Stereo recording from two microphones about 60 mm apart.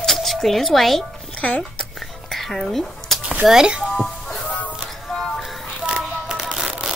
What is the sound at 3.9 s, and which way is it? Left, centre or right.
Music, centre.